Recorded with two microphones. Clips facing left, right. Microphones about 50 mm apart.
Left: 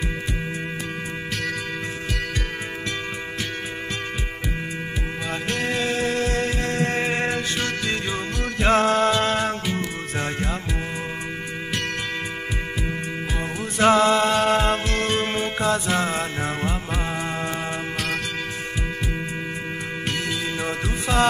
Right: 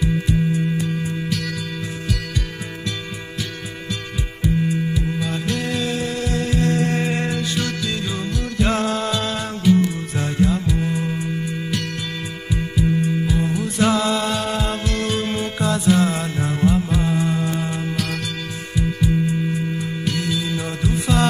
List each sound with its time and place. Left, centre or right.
4.9 s music: left
13.3 s music: left
20.1 s music: left